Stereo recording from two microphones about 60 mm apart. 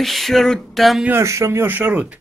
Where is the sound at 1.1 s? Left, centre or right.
Right.